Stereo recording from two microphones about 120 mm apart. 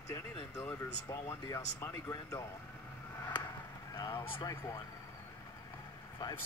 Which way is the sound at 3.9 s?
35° left (ahead or behind).